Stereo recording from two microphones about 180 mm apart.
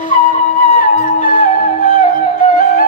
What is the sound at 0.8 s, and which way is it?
Music, 50° left (ahead or behind).